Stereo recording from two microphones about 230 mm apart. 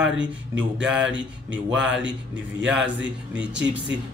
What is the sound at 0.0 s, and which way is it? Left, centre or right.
Speech, centre.